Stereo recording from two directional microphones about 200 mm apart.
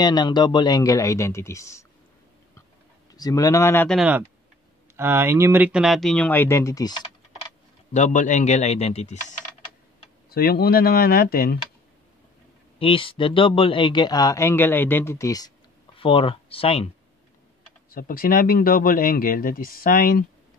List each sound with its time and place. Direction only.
0.0 s speech: 20° left (ahead or behind)
3.2 s speech: 15° left (ahead or behind)
4.0 s speech: 5° right (ahead or behind); by 7.1 s 20° left (ahead or behind)
7.9 s a man's voice: 35° left (ahead or behind)
10.3 s speech: 50° left (ahead or behind)
12.7 s speech: 25° left (ahead or behind)
17.9 s speech: 45° left (ahead or behind)